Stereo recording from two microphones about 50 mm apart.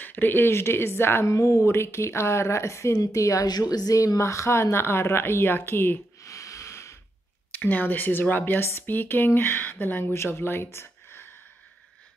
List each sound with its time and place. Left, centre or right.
0.0 s speech: left
1.2 s speech: left
6.2 s snort: left
7.5 s speech: left
10.1 s speech: left